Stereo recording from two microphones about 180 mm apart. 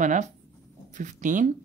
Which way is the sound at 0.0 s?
45° right (ahead or behind).